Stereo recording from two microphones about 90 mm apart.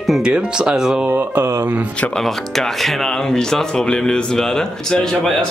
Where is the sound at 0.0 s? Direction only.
Centre (ahead or behind).